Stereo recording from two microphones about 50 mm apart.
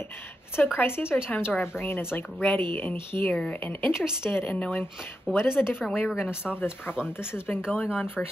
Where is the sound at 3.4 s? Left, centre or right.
Left.